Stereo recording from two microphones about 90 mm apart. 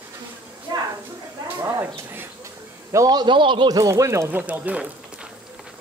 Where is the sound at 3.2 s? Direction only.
65° right (ahead or behind).